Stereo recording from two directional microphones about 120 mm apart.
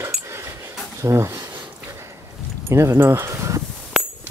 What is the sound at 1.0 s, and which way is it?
Speech, 25° right (ahead or behind).